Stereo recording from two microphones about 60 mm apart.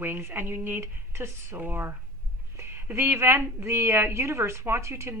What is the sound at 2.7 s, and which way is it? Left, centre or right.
A woman's voice, right.